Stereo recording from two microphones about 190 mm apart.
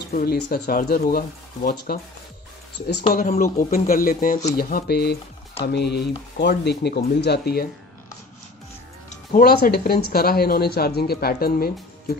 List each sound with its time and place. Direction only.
0.1 s speech: 50° left (ahead or behind)
3.1 s speech: 50° left (ahead or behind)
9.1 s speech: 45° left (ahead or behind)